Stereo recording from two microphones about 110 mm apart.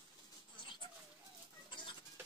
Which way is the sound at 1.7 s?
45° left (ahead or behind).